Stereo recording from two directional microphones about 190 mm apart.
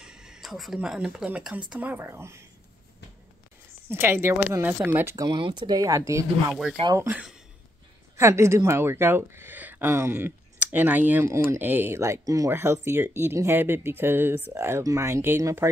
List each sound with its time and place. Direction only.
0.0 s speech: 5° right (ahead or behind)
3.9 s speech: 10° right (ahead or behind)
6.5 s speech: centre (ahead or behind)